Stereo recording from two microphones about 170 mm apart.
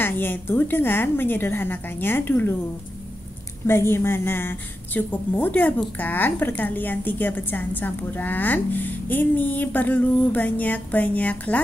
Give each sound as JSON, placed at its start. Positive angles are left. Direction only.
{"t": 0.0, "sound": "a woman's voice", "side_deg": 10}
{"t": 3.6, "sound": "a woman's voice", "side_deg": 15}